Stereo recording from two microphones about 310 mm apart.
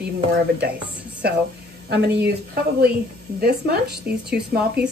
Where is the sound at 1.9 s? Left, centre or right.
Right.